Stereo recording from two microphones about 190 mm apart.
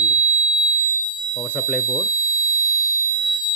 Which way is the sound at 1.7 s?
Centre (ahead or behind).